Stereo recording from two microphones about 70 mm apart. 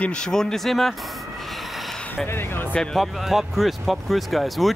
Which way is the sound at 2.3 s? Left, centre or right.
Left.